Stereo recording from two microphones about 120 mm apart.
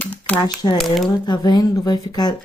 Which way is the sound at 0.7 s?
Centre (ahead or behind).